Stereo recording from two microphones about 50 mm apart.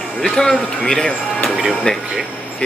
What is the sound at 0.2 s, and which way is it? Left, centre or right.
Speech, centre.